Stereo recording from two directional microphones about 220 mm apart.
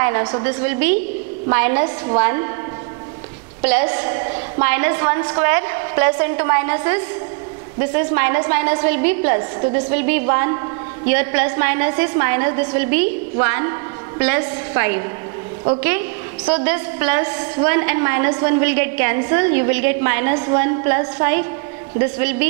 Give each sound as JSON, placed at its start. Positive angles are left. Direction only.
{"t": 0.0, "sound": "a woman's voice", "side_deg": -20}
{"t": 3.6, "sound": "a woman's voice", "side_deg": -10}
{"t": 9.4, "sound": "a woman's voice", "side_deg": -25}
{"t": 9.9, "sound": "a woman's voice", "side_deg": -10}
{"t": 16.6, "sound": "a woman's voice", "side_deg": -15}